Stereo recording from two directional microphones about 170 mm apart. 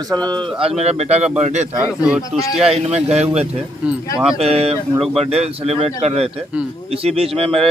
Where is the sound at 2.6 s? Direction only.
35° right (ahead or behind).